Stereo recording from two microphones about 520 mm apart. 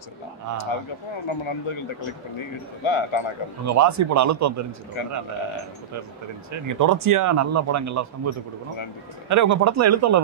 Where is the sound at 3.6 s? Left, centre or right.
Right.